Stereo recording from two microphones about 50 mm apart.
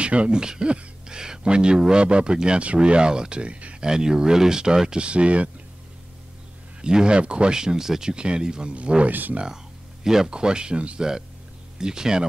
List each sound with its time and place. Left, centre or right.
0.0 s speech: right
3.9 s speech: centre
6.8 s speech: centre
9.1 s speech: right
10.0 s speech: centre
11.0 s speech: centre